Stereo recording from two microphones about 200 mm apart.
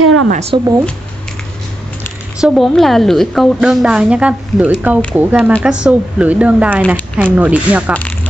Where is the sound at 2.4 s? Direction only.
Centre (ahead or behind).